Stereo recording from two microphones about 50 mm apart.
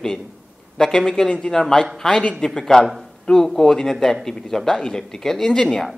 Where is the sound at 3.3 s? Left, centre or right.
Centre.